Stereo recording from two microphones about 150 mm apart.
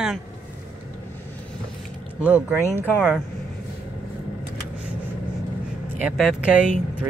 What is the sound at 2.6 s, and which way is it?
Speech, 15° left (ahead or behind).